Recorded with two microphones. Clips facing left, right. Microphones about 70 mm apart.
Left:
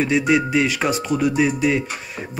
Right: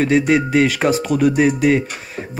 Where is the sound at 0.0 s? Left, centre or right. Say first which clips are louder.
Right 3 dB; right.